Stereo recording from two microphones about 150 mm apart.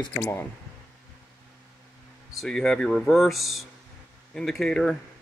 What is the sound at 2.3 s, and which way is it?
Speech, 5° left (ahead or behind).